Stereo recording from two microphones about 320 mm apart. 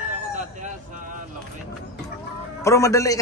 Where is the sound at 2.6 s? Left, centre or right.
Centre.